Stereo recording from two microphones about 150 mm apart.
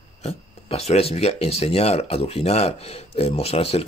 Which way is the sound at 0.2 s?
40° left (ahead or behind).